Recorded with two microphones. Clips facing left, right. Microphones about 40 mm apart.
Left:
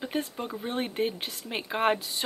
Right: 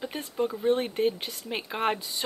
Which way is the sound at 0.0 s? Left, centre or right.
Centre.